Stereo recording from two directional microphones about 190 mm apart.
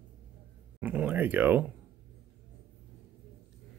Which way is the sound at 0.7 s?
10° right (ahead or behind).